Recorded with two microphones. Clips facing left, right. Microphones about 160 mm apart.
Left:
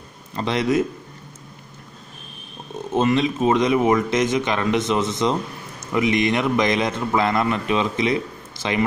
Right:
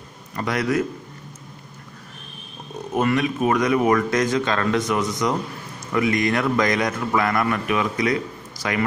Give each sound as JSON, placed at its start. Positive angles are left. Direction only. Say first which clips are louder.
{"t": 0.4, "sound": "speech", "louder": "left 2 dB", "side_deg": 25}
{"t": 2.9, "sound": "speech", "louder": "left 2 dB", "side_deg": 25}